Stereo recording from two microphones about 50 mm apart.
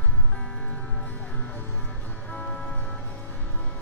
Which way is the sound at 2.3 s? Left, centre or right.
Left.